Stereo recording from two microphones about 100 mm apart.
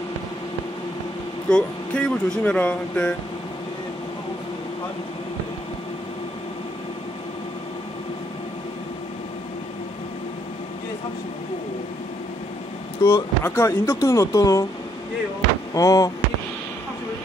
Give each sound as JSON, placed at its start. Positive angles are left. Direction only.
{"t": 1.5, "sound": "speech", "side_deg": 10}
{"t": 13.0, "sound": "speech", "side_deg": 25}
{"t": 15.7, "sound": "speech", "side_deg": 35}